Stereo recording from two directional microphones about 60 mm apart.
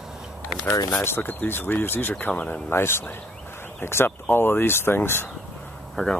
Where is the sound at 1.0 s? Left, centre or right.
Left.